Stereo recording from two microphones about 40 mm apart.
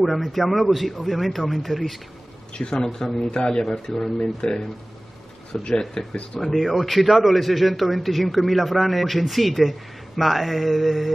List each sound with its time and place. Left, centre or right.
0.0 s a man's voice: centre
2.5 s a man's voice: left
6.4 s a man's voice: centre